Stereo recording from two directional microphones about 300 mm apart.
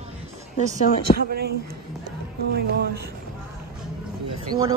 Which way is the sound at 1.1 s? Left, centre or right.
Right.